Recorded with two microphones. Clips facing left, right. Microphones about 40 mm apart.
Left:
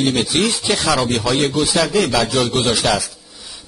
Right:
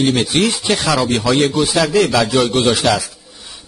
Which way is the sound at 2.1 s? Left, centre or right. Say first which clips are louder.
Right 3 dB; centre.